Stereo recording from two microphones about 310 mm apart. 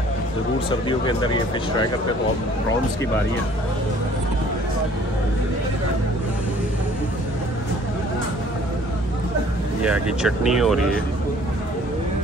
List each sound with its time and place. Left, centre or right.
0.7 s speech: centre
9.8 s speech: centre